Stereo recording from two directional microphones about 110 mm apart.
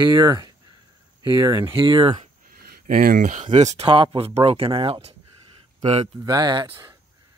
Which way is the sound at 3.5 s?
90° right.